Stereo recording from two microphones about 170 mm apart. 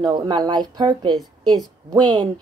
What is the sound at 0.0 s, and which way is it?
A woman's voice, 25° right (ahead or behind).